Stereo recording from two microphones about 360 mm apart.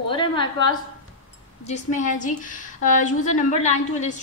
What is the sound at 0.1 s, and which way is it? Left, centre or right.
A woman's voice, centre.